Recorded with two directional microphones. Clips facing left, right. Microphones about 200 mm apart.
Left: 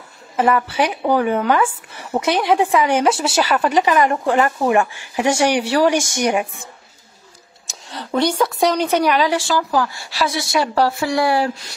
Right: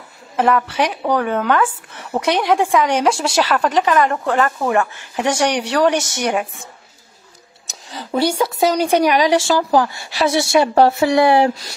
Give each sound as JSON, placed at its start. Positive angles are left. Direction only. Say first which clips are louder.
{"t": 0.4, "sound": "speech", "louder": "even", "side_deg": 5}
{"t": 7.6, "sound": "a sound", "louder": "even", "side_deg": 0}
{"t": 8.5, "sound": "speech", "louder": "right 4 dB", "side_deg": -10}